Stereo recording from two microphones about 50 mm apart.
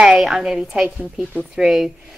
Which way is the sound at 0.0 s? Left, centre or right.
Centre.